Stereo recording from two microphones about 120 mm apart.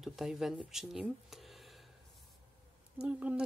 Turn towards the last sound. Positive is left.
turn(degrees=-10)  # may be behind; listen again after turning